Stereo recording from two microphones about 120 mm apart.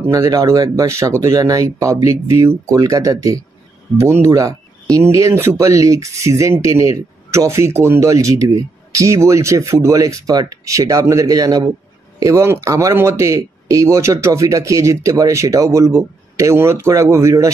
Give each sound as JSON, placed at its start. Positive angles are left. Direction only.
{"t": 0.1, "sound": "speech", "side_deg": -30}